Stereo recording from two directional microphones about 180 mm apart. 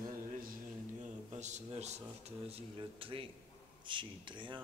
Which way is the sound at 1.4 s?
40° right (ahead or behind).